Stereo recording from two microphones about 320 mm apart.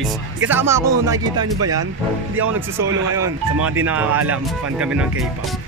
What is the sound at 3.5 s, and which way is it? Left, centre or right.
Speech, right.